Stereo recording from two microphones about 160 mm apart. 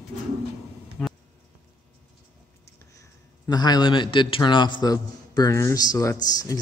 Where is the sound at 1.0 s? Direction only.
5° left (ahead or behind).